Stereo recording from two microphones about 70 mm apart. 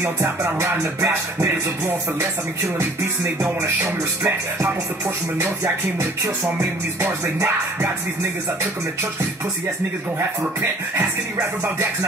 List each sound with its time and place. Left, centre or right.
0.0 s music: right
5.9 s music: right